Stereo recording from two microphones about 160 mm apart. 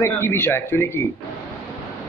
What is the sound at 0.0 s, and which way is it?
Speech, 15° left (ahead or behind).